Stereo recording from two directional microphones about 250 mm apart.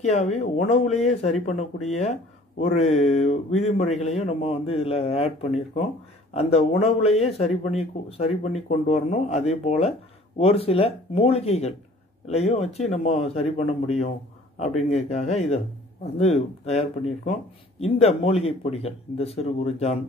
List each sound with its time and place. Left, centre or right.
0.0 s speech: left